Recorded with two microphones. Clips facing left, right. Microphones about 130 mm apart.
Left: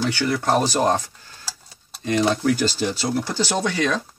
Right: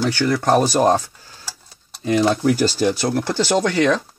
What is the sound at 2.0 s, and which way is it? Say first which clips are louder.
Speech: right 3 dB; 25° right (ahead or behind).